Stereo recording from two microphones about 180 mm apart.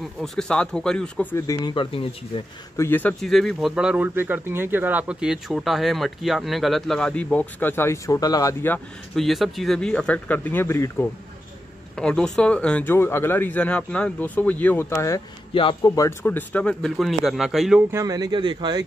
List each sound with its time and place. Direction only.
0.2 s speech: 5° left (ahead or behind); by 2.4 s 30° left (ahead or behind)
2.8 s speech: 10° left (ahead or behind)
15.5 s speech: 25° left (ahead or behind); by 17.8 s centre (ahead or behind)
17.9 s speech: 20° right (ahead or behind)